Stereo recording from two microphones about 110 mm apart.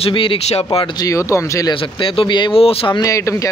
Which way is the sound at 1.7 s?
50° left (ahead or behind).